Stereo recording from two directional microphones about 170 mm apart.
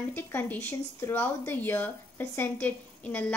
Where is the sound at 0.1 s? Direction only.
10° left (ahead or behind).